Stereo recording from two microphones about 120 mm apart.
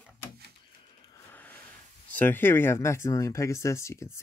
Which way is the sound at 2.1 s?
15° left (ahead or behind).